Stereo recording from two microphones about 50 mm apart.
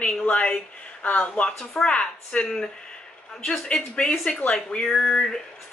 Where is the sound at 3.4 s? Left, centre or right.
Centre.